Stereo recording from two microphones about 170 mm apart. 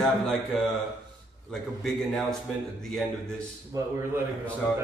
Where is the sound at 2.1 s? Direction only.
Centre (ahead or behind).